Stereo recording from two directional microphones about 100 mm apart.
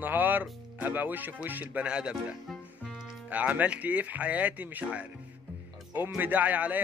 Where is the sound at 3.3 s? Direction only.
15° right (ahead or behind).